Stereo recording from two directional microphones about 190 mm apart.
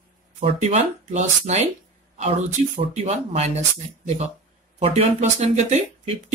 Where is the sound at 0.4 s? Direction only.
35° right (ahead or behind).